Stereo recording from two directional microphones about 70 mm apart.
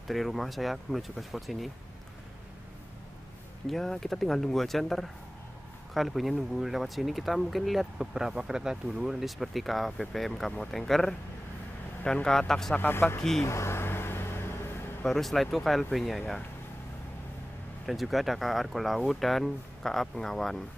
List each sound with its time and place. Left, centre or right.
0.1 s speech: centre
3.6 s speech: centre
12.7 s speech: left
13.4 s a sound: left
15.0 s speech: centre
17.8 s speech: centre